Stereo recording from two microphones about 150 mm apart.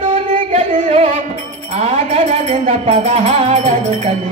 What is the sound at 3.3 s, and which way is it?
Music, 35° right (ahead or behind).